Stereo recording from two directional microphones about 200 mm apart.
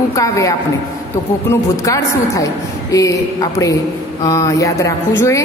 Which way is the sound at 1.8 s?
15° left (ahead or behind).